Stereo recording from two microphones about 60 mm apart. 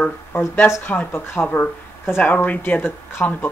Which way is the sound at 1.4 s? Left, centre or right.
Left.